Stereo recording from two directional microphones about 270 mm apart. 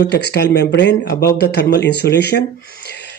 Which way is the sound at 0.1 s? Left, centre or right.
Left.